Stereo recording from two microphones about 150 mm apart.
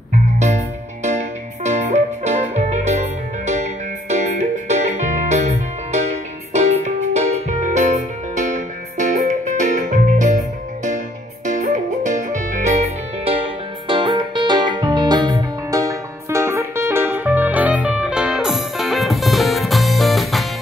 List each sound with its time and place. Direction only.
1.0 s music: 50° right (ahead or behind); by 20.4 s centre (ahead or behind)